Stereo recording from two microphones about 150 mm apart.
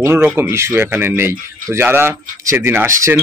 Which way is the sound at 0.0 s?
15° right (ahead or behind).